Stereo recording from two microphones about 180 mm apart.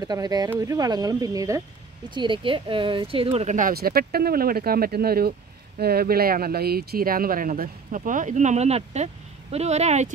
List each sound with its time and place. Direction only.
0.0 s speech: 20° right (ahead or behind); by 10.1 s 40° right (ahead or behind)